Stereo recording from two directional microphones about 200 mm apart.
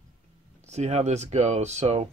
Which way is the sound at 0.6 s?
35° right (ahead or behind).